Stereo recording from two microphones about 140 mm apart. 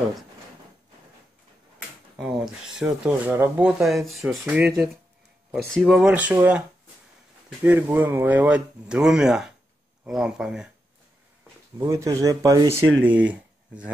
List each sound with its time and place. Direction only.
2.1 s speech: centre (ahead or behind)
5.9 s speech: 5° right (ahead or behind)
7.6 s speech: 10° right (ahead or behind)
11.8 s speech: 25° right (ahead or behind)